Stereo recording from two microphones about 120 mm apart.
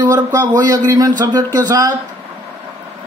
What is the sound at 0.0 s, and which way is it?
Speech, 30° right (ahead or behind).